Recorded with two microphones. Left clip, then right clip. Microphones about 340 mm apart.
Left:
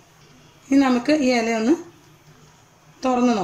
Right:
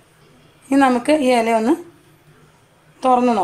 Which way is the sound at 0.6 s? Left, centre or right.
Right.